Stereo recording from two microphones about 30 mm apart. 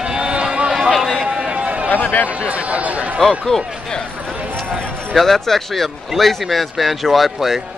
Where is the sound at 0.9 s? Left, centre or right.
Centre.